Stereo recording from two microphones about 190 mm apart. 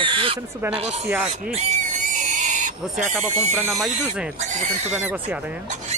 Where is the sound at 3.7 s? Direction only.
Centre (ahead or behind).